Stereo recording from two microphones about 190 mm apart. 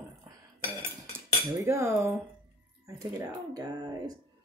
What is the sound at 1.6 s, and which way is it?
Speech, 15° right (ahead or behind).